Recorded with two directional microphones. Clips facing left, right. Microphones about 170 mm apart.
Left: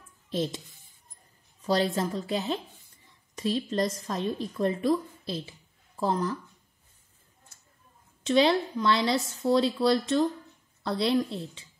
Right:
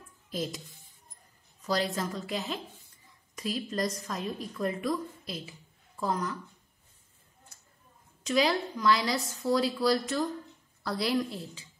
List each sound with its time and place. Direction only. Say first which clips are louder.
0.3 s speech: left 5 dB; 30° left (ahead or behind)
1.6 s a woman's voice: left 4 dB; 30° left (ahead or behind)
8.2 s a woman's voice: left 4 dB; 25° left (ahead or behind)